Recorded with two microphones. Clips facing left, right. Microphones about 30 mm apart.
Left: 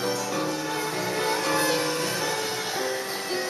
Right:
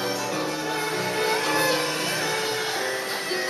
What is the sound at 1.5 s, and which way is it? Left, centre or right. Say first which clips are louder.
Music: even; centre.